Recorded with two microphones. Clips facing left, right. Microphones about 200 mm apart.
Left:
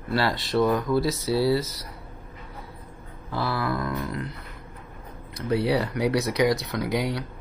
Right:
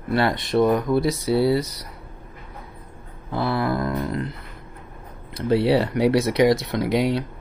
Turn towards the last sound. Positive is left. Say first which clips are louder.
# right 5 dB
turn(degrees=-25)  # may be behind; listen again after turning